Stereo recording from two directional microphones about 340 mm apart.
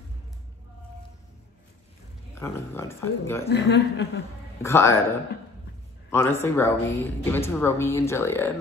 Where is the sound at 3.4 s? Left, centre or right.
Left.